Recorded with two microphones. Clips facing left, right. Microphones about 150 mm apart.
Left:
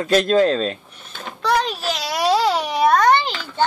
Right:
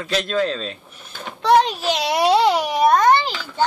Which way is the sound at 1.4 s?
20° right (ahead or behind).